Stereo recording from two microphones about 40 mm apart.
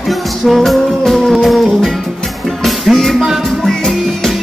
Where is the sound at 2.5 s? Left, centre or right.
Centre.